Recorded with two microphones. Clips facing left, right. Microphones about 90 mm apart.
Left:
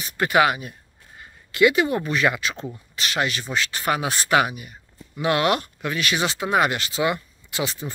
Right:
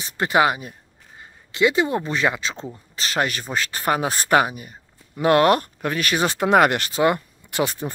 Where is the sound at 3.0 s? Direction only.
40° right (ahead or behind).